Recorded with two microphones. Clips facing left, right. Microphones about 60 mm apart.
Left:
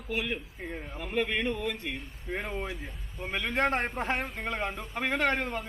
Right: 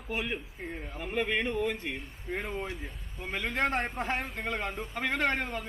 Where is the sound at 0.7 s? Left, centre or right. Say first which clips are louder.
Left 2 dB; centre.